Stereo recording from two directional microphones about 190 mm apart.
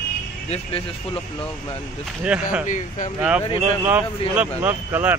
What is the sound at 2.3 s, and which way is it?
Speech, 5° right (ahead or behind).